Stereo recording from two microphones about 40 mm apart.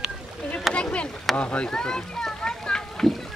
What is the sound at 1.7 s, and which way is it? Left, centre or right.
Speech, centre.